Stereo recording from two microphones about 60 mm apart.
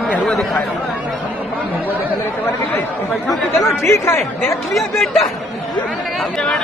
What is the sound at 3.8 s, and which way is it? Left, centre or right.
Speech, left.